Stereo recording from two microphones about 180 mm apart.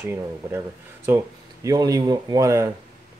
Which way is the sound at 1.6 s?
20° right (ahead or behind).